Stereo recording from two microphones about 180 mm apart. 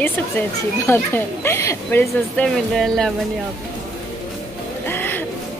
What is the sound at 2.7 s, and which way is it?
Speech, centre (ahead or behind).